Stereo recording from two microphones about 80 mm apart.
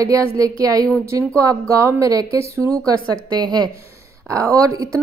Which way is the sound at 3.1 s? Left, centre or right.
Right.